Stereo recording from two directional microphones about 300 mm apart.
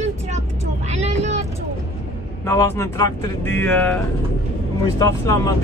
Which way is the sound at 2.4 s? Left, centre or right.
Centre.